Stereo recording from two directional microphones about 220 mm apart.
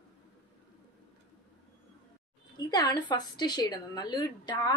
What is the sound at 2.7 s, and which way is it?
A woman's voice, 15° left (ahead or behind).